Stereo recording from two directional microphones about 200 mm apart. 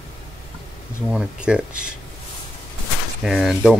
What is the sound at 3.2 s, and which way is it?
Speech, centre (ahead or behind).